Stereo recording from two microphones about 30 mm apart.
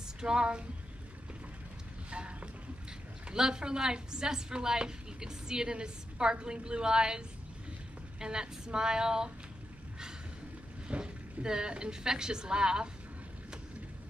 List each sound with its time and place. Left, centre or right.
0.2 s a woman's voice: right
2.0 s speech: right
3.3 s a woman's voice: right
10.9 s a woman's voice: right